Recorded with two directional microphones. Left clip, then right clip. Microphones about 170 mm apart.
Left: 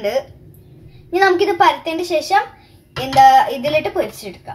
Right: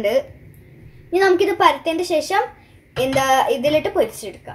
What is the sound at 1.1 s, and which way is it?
A woman's voice, 25° right (ahead or behind).